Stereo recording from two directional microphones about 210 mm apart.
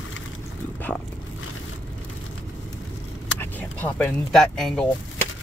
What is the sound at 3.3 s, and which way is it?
Speech, 10° left (ahead or behind).